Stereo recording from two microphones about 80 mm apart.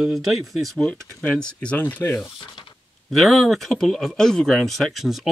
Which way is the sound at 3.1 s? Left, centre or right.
Centre.